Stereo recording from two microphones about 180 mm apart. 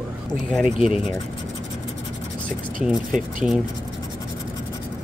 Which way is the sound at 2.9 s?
Centre (ahead or behind).